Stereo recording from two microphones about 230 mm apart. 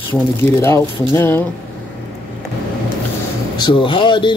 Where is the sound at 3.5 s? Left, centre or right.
Centre.